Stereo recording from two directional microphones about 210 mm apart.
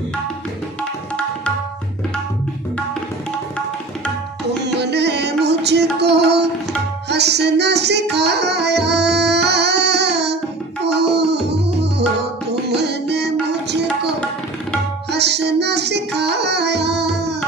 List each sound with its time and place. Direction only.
4.7 s music: 55° right (ahead or behind)
12.2 s tabla: 55° right (ahead or behind)
15.0 s music: 55° right (ahead or behind)